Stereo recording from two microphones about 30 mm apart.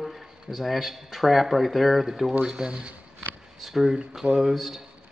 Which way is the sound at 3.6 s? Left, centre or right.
Centre.